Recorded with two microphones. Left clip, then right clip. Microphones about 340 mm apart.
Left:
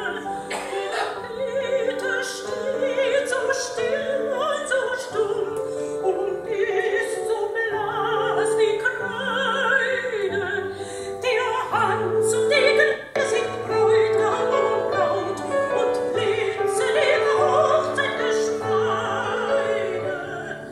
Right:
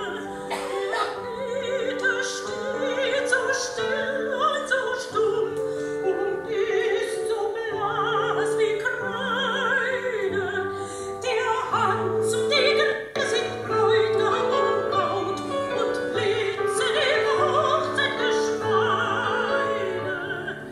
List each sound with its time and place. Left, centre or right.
2.8 s opera: left
11.2 s opera: left